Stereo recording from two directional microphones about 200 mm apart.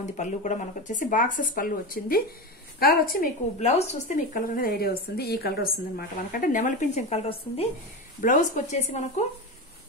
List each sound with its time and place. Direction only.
0.0 s speech: 35° left (ahead or behind)
3.6 s speech: 35° left (ahead or behind)